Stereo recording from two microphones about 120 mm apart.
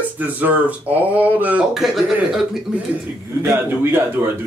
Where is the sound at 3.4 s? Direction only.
20° right (ahead or behind).